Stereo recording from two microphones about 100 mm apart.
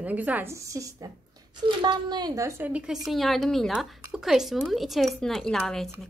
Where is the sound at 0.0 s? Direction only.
15° right (ahead or behind).